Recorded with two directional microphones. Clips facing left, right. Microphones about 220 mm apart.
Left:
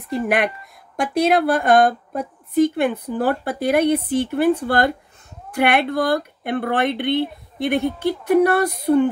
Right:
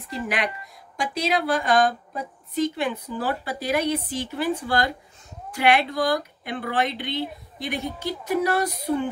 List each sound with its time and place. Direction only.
0.1 s speech: 55° left (ahead or behind)